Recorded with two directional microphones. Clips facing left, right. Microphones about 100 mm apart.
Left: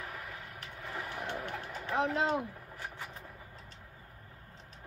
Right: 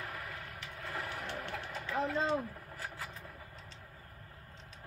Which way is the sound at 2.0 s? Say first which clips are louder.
Left 2 dB; 85° left.